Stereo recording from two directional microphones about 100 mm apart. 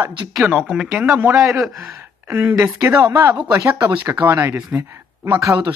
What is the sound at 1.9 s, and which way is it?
Speech, 25° right (ahead or behind).